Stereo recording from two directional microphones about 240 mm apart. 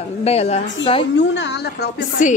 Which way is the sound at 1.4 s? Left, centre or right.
Left.